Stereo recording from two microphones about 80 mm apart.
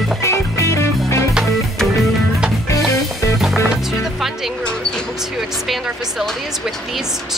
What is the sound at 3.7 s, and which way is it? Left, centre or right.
Music, centre.